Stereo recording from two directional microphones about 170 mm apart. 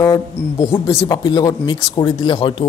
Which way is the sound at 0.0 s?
20° left (ahead or behind).